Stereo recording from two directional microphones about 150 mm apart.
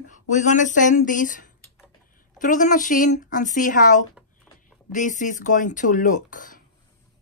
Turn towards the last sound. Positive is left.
turn(degrees=60)  # may be behind; listen again after turning